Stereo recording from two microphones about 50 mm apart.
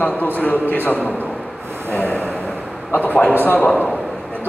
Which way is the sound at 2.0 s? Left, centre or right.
Left.